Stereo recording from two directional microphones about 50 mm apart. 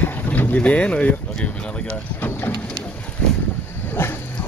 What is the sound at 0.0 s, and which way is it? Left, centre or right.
Boat, left.